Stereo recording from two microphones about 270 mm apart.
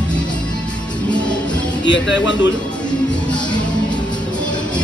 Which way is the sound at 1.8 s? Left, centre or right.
Left.